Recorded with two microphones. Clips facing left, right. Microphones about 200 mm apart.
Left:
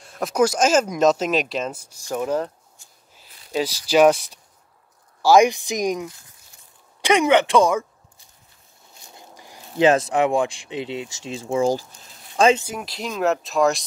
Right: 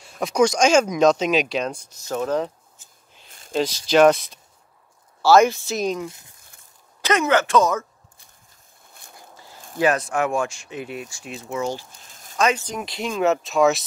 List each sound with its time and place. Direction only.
0.0 s speech: centre (ahead or behind)
3.3 s a sound: 50° right (ahead or behind)
3.5 s speech: 10° left (ahead or behind)
9.1 s a sound: 15° left (ahead or behind)
9.8 s speech: 25° left (ahead or behind)
10.7 s speech: 85° left
11.0 s speech: 25° left (ahead or behind)
12.1 s a sound: 45° right (ahead or behind)
12.4 s speech: 30° left (ahead or behind)
12.6 s speech: centre (ahead or behind)